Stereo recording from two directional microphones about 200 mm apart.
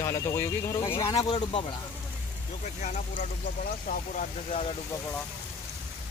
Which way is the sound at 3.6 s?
45° left (ahead or behind).